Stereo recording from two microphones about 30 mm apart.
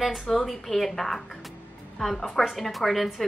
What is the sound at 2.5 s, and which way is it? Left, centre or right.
Speech, centre.